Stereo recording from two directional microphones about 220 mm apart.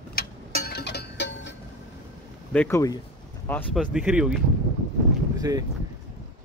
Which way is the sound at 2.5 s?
10° left (ahead or behind).